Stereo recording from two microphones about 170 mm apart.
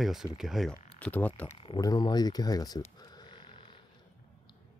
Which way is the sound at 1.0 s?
10° left (ahead or behind).